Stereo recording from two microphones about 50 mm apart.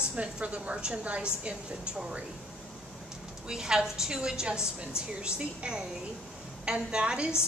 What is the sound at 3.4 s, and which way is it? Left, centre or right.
A woman's voice, centre.